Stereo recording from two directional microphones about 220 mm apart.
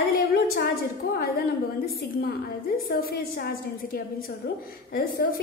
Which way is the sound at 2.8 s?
40° left (ahead or behind).